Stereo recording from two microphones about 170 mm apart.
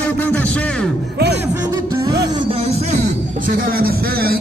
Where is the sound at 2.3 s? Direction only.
30° right (ahead or behind).